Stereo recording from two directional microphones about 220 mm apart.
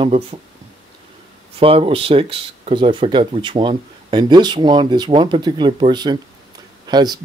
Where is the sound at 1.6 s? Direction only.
25° right (ahead or behind).